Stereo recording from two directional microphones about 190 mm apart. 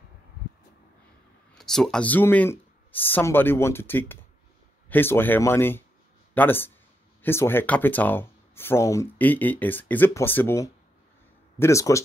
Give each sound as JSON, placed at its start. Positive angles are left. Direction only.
{"t": 1.5, "sound": "speech", "side_deg": 0}